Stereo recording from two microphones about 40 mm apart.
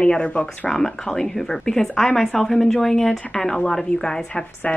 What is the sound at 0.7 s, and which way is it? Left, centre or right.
A woman's voice, centre.